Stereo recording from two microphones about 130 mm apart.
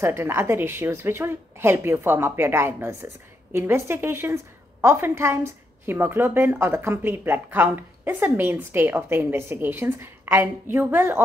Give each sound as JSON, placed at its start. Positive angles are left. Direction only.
{"t": 0.0, "sound": "a woman's voice", "side_deg": -20}